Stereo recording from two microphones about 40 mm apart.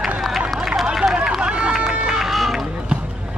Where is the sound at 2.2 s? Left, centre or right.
Centre.